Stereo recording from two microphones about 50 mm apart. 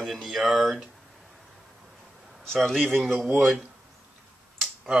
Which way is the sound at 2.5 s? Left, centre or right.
Centre.